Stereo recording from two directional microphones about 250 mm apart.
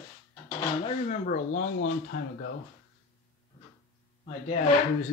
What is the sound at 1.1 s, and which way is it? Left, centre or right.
Speech, left.